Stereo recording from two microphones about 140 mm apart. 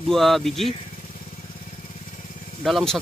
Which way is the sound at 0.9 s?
65° left (ahead or behind).